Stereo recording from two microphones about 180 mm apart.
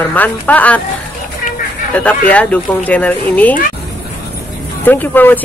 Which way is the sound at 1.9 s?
10° left (ahead or behind).